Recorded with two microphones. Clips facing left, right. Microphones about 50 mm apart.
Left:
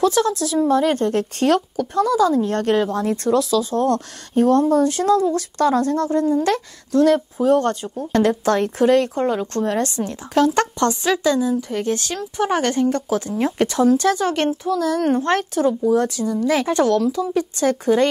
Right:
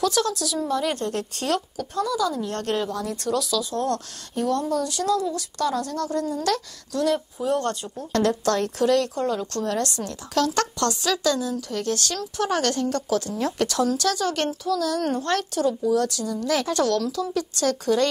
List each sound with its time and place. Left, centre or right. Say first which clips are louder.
0.0 s a woman's voice: left 5 dB; left